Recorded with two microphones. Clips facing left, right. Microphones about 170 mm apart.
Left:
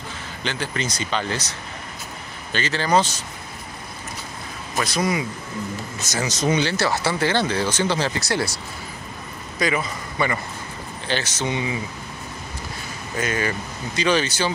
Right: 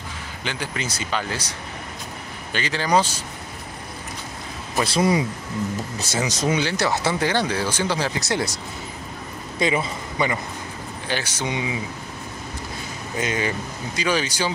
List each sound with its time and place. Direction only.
0.4 s speech: 10° right (ahead or behind)
2.5 s speech: 15° right (ahead or behind)
4.8 s speech: 30° right (ahead or behind)
6.2 s speech: 10° right (ahead or behind)
9.6 s a man's voice: 25° right (ahead or behind)
13.2 s speech: 20° right (ahead or behind)